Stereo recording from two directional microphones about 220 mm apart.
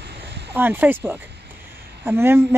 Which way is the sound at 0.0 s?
50° right (ahead or behind).